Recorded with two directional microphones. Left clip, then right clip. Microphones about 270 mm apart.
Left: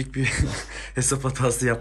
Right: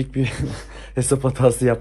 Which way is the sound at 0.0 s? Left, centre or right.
Centre.